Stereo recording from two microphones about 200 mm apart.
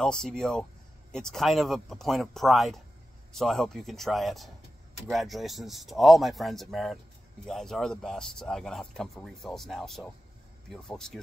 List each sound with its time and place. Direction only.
0.0 s speech: 5° left (ahead or behind)